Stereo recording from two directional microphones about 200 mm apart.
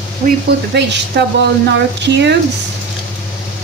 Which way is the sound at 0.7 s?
60° right (ahead or behind).